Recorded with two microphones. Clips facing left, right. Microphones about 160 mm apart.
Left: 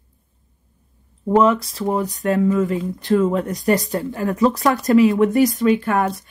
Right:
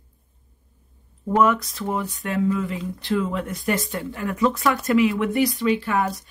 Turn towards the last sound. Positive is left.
turn(degrees=50)  # may be behind; listen again after turning